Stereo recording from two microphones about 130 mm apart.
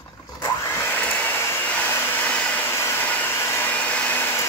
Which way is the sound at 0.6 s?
15° left (ahead or behind).